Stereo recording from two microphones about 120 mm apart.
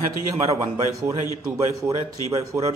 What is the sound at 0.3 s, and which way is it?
Speech, 25° right (ahead or behind).